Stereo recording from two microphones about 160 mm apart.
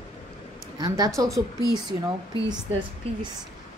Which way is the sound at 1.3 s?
Centre (ahead or behind).